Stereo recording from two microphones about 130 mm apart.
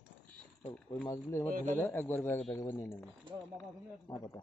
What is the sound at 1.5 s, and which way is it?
Speech, 90° right.